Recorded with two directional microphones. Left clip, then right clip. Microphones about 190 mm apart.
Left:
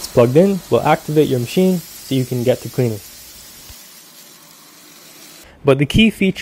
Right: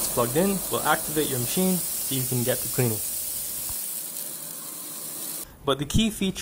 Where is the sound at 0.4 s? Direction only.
15° left (ahead or behind).